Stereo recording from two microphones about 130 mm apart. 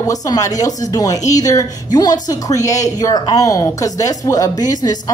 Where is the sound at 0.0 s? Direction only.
25° left (ahead or behind).